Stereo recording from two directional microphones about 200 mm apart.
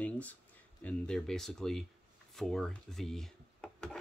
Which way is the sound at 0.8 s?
5° left (ahead or behind).